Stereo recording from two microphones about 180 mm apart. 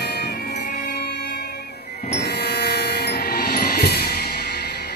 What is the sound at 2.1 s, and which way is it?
Train, 65° left (ahead or behind).